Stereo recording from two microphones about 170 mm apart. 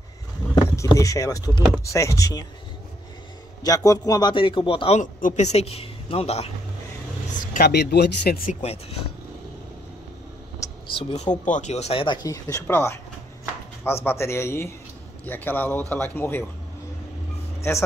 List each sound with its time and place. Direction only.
0.7 s speech: 20° left (ahead or behind)
3.6 s a man's voice: 20° left (ahead or behind); by 6.5 s 35° left (ahead or behind)
7.5 s speech: 70° left (ahead or behind)
8.5 s a man's voice: 35° left (ahead or behind)
10.6 s a sound: 20° left (ahead or behind)
11.0 s a man's voice: 35° left (ahead or behind); by 13.0 s 15° left (ahead or behind)
14.0 s a man's voice: 15° left (ahead or behind)
17.6 s a man's voice: 15° left (ahead or behind)